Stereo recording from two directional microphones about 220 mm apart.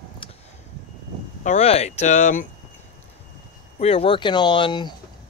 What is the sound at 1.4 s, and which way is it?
Speech, 30° left (ahead or behind).